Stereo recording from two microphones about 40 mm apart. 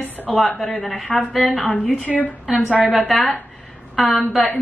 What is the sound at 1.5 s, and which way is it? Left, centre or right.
Speech, left.